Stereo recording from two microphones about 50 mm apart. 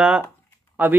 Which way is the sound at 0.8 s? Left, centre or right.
Right.